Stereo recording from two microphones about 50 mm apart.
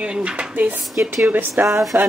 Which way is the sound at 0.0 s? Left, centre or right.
Right.